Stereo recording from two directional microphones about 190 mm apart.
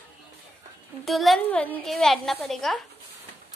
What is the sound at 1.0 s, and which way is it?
A woman's voice, centre (ahead or behind).